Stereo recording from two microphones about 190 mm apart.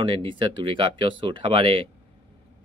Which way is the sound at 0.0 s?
25° right (ahead or behind).